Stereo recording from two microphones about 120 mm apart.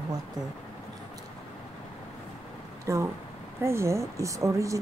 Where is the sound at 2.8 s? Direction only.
25° right (ahead or behind).